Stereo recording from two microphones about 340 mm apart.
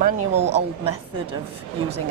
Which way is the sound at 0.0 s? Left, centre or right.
Centre.